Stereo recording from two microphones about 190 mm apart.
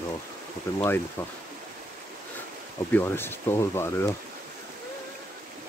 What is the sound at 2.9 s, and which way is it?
Speech, 10° left (ahead or behind).